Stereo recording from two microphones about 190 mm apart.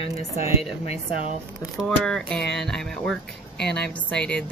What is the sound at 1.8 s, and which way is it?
A woman's voice, 5° left (ahead or behind).